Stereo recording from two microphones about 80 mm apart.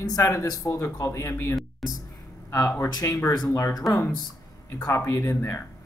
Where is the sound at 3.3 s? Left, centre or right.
Left.